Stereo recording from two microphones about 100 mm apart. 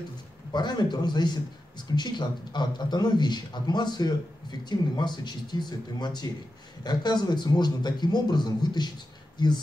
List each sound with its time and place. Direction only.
0.5 s a man's voice: 45° left (ahead or behind)